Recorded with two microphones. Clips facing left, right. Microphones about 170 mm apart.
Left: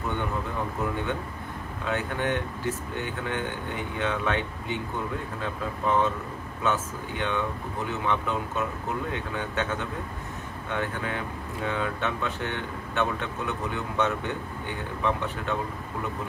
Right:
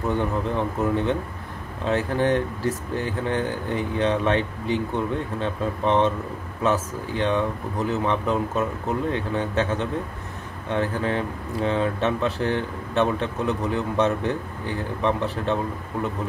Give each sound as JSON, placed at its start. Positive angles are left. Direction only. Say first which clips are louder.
{"t": 0.1, "sound": "speech", "louder": "right 8 dB", "side_deg": -30}